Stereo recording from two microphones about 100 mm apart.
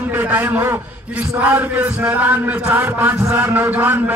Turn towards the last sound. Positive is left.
turn(degrees=-15)  # may be behind; listen again after turning